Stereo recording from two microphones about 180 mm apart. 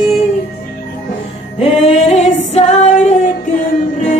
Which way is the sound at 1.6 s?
35° left (ahead or behind).